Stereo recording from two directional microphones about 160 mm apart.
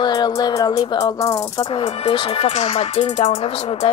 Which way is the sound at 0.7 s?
30° left (ahead or behind).